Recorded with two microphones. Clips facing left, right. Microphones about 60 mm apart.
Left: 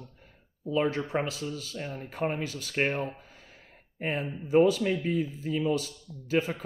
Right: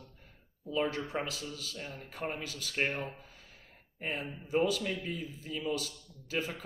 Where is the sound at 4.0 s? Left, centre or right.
Left.